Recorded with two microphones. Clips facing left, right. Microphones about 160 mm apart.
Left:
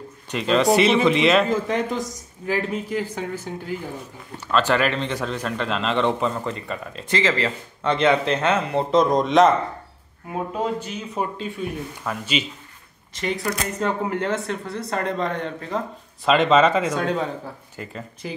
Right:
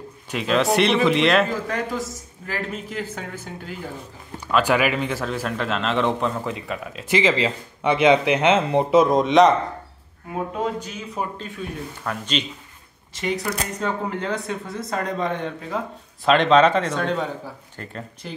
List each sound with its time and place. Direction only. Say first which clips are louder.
0.3 s speech: left 2 dB; centre (ahead or behind)
1.5 s a man's voice: left 3 dB; 20° left (ahead or behind)
4.5 s a man's voice: right 1 dB; 10° right (ahead or behind)
8.9 s speech: right 1 dB; 5° right (ahead or behind)
14.4 s speech: left 1 dB; 20° right (ahead or behind)
14.9 s a man's voice: even; 5° right (ahead or behind)
16.3 s speech: right 1 dB; centre (ahead or behind)